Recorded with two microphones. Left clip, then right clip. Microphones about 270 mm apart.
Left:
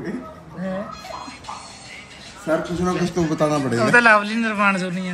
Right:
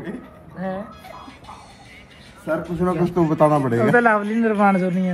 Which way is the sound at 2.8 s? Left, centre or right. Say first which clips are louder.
Right 2 dB; right.